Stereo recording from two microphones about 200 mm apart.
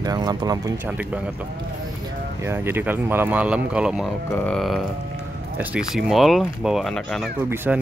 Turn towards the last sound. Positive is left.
turn(degrees=-10)  # may be behind; listen again after turning